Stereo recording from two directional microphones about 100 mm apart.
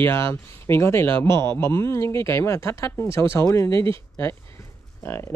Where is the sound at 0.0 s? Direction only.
25° left (ahead or behind).